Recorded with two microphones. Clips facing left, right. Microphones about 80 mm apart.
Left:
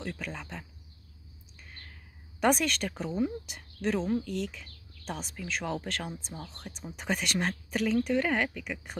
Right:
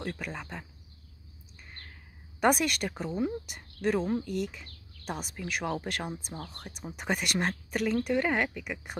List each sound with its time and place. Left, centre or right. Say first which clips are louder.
0.0 s speech: right 1 dB; centre
2.4 s speech: right 1 dB; centre
6.3 s speech: right 2 dB; right
6.6 s speech: right 1 dB; centre